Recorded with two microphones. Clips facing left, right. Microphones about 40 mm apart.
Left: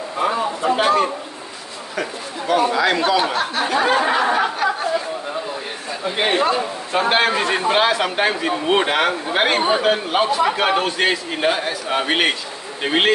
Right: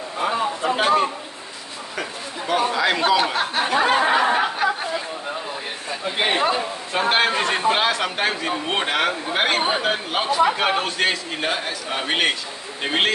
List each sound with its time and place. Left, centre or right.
0.7 s a man's voice: centre
2.0 s a sound: centre
2.7 s a man's voice: centre
3.3 s speech: centre
4.1 s a sound: centre
6.0 s a man's voice: centre